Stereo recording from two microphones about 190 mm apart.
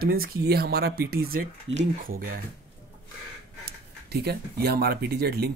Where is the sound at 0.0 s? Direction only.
50° right (ahead or behind).